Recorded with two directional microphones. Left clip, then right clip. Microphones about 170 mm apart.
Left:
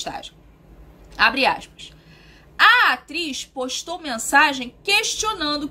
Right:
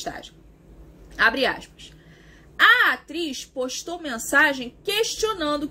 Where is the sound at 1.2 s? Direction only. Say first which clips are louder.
Left 3 dB; 20° left (ahead or behind).